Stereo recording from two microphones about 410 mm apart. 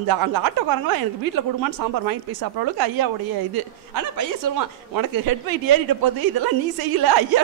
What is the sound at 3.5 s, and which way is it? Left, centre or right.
Speech, right.